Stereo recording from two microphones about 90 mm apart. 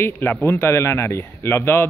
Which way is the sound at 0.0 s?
20° left (ahead or behind).